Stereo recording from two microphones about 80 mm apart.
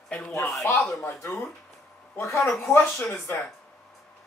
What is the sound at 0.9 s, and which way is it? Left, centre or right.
Speech, left.